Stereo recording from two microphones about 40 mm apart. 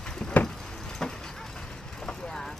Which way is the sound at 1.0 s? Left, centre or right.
Centre.